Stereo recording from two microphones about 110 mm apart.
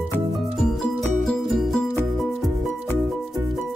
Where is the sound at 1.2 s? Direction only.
5° left (ahead or behind).